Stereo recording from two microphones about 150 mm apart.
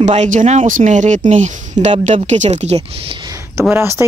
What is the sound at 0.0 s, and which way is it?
A woman's voice, 50° right (ahead or behind).